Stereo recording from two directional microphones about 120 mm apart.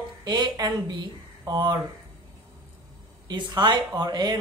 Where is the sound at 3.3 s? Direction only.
35° right (ahead or behind).